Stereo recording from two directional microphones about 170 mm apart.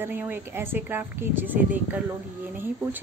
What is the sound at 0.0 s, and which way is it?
A woman's voice, 10° right (ahead or behind).